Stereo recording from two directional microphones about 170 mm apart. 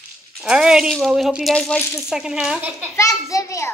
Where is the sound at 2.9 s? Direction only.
20° left (ahead or behind).